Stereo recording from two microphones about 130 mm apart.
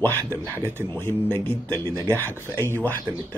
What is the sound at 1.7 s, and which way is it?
Speech, 30° right (ahead or behind).